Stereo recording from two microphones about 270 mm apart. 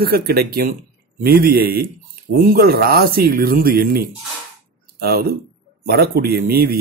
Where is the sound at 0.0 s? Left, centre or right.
Right.